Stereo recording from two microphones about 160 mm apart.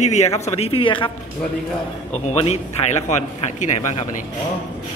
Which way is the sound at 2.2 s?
45° left (ahead or behind).